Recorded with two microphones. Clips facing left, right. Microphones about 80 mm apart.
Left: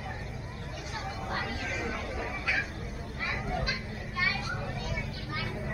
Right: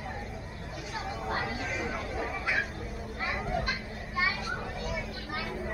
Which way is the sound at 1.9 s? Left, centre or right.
Centre.